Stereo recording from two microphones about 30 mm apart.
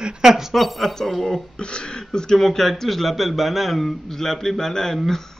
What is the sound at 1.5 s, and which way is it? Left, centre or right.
Speech, left.